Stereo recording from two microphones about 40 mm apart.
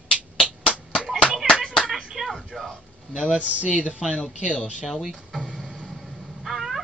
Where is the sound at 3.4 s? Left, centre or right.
Right.